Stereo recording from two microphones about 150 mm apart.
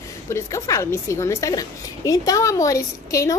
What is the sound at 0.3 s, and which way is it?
A woman's voice, 20° left (ahead or behind).